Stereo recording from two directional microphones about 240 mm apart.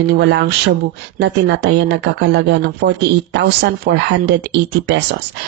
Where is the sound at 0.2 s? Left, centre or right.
Right.